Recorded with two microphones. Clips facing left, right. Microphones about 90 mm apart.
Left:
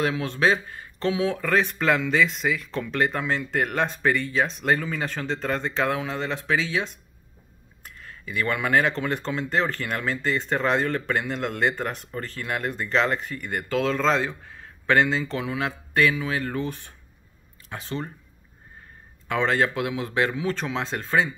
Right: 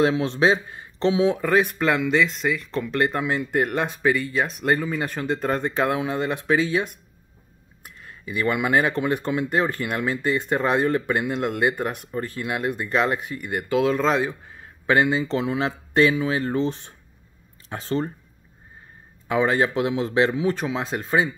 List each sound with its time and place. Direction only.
0.0 s speech: 25° right (ahead or behind)
1.8 s speech: centre (ahead or behind); by 16.9 s 25° right (ahead or behind)
17.6 s speech: 35° right (ahead or behind)
19.2 s speech: 15° right (ahead or behind)